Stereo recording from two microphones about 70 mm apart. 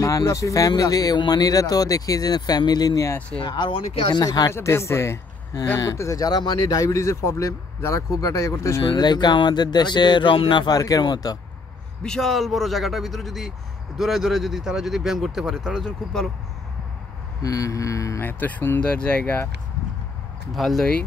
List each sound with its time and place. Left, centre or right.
0.0 s speech: left
0.7 s speech: left
4.1 s speech: left
4.5 s speech: left
9.0 s speech: left
12.0 s speech: centre
17.4 s speech: left
18.2 s speech: left
18.9 s speech: centre
20.5 s speech: centre